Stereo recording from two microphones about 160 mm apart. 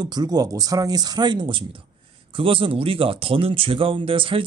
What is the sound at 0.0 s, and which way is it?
Speech, 25° right (ahead or behind).